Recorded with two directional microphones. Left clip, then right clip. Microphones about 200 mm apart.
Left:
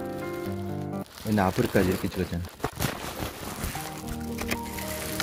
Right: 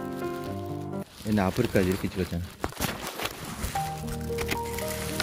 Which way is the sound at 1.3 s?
10° left (ahead or behind).